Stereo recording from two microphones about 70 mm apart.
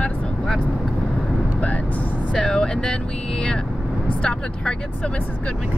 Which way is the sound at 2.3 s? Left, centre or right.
Centre.